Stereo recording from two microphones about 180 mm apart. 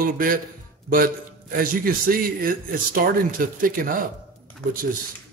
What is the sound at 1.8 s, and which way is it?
Speech, 55° right (ahead or behind).